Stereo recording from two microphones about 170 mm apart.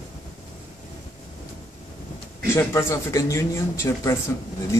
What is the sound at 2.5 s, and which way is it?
Speech, 15° left (ahead or behind).